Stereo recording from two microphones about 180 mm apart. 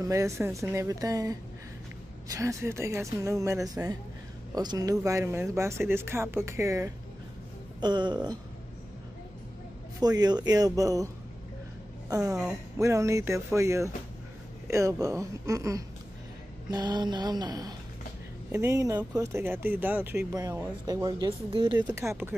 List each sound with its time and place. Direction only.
0.0 s speech: 15° right (ahead or behind)
9.9 s speech: 20° right (ahead or behind)
12.1 s speech: 20° right (ahead or behind)
21.7 s speech: 15° right (ahead or behind)